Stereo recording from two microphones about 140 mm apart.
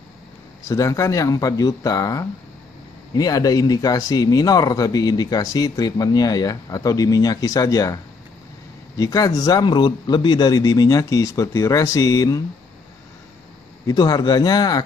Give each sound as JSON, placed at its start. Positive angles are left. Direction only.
{"t": 0.7, "sound": "speech", "side_deg": 25}
{"t": 13.8, "sound": "speech", "side_deg": 30}